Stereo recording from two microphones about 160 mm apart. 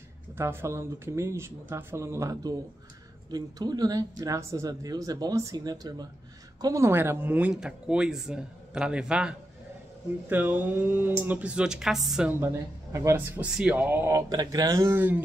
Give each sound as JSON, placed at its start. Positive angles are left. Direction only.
{"t": 0.4, "sound": "speech", "side_deg": -15}
{"t": 10.3, "sound": "speech", "side_deg": -10}
{"t": 12.9, "sound": "speech", "side_deg": -15}